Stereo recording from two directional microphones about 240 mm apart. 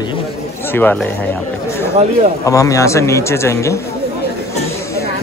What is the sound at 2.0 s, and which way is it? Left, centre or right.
Speech, right.